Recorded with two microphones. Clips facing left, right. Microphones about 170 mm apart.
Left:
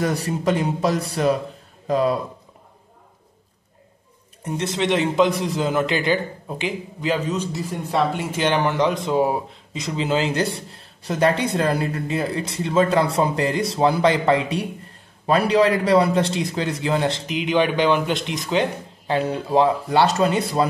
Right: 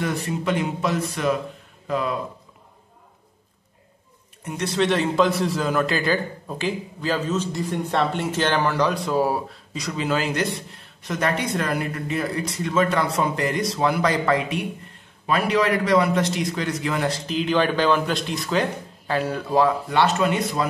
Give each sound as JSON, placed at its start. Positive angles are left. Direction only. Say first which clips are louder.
{"t": 0.0, "sound": "speech", "louder": "left 3 dB", "side_deg": 40}
{"t": 4.5, "sound": "speech", "louder": "even", "side_deg": 25}